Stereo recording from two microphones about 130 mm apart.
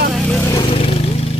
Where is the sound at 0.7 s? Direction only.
50° left (ahead or behind).